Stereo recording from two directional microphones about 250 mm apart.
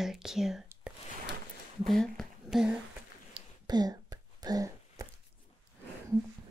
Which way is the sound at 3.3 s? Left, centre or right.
Centre.